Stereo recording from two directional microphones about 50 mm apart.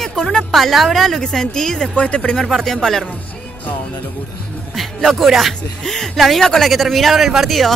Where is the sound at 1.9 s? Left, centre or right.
Left.